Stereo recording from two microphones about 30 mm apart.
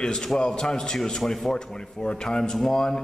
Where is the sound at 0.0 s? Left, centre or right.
Left.